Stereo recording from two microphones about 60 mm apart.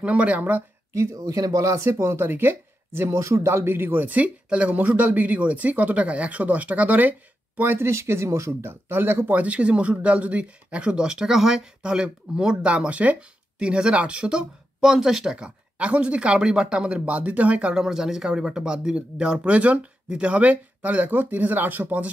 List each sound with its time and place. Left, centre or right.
0.0 s speech: right
0.9 s speech: right
1.9 s speech: right
2.2 s speech: right
9.4 s speech: right
14.8 s speech: centre
15.3 s speech: centre
17.7 s speech: centre; by 22.1 s right